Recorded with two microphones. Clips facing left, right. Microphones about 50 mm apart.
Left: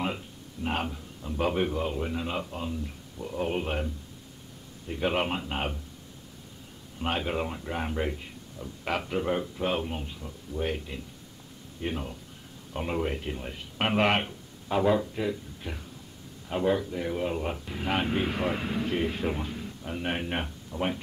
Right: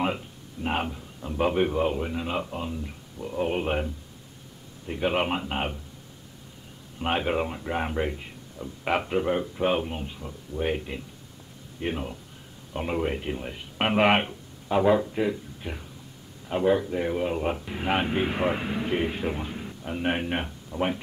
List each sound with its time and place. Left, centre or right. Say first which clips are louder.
0.0 s a sound: right 4 dB; centre
1.2 s speech: right 3 dB; centre
5.0 s speech: right 2 dB; centre
7.0 s speech: right 4 dB; centre